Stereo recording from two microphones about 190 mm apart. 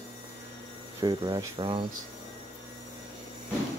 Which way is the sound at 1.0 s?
20° right (ahead or behind).